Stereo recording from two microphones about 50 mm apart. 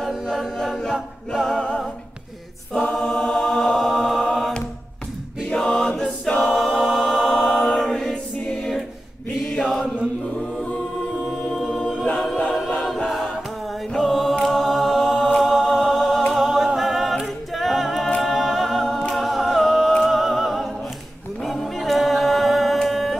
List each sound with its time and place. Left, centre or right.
0.1 s a capella: centre
1.3 s music: centre
2.7 s choir: left
3.4 s music: centre
5.5 s choir: centre
9.6 s chant: centre
11.1 s choir: centre
11.8 s a capella: centre
12.8 s choir: centre
14.4 s a capella: centre
20.0 s music: centre
21.4 s a capella: centre